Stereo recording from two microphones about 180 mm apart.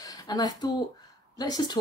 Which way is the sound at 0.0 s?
20° left (ahead or behind).